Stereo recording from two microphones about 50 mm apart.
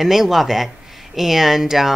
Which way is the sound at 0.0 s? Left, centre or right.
Centre.